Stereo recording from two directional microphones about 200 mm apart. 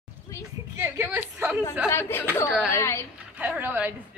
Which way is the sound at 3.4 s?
10° right (ahead or behind).